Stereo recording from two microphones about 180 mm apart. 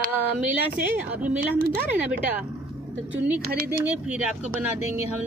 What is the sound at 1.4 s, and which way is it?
Speech, 55° right (ahead or behind).